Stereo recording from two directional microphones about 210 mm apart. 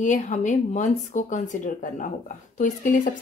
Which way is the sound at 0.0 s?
35° left (ahead or behind).